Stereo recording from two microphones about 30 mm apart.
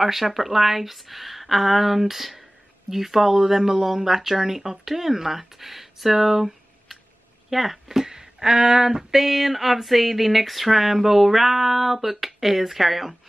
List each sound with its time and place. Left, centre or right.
0.0 s speech: centre
8.1 s a sound: centre
9.1 s speech: centre